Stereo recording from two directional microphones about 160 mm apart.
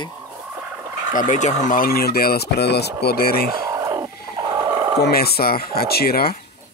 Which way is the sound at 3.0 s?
75° left (ahead or behind).